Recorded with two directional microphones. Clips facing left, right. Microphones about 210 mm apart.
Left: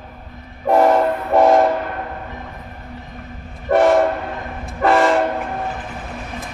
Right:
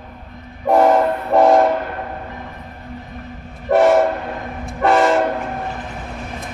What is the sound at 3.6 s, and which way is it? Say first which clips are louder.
Train: right 1 dB; centre (ahead or behind).